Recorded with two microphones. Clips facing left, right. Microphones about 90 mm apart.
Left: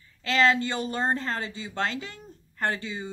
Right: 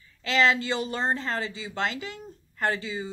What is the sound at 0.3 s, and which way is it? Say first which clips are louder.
Speech: even; 45° left (ahead or behind).